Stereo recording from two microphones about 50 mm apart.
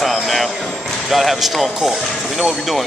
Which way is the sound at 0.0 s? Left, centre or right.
Centre.